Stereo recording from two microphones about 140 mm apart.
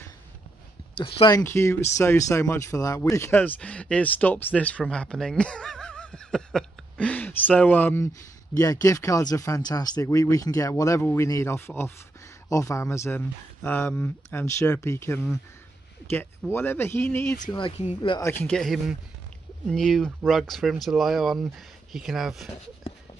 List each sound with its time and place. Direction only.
0.9 s speech: 40° left (ahead or behind)
1.4 s speech: 20° left (ahead or behind)
8.5 s speech: 25° left (ahead or behind)
17.5 s speech: 35° left (ahead or behind)
18.2 s speech: 15° left (ahead or behind)
18.5 s speech: centre (ahead or behind)